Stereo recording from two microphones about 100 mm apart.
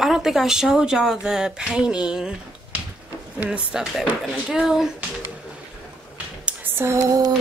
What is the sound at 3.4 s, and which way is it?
Speech, 10° right (ahead or behind).